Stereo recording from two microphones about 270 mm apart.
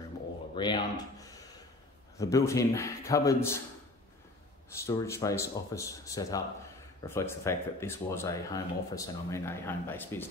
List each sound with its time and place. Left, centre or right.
0.6 s speech: centre
4.8 s speech: centre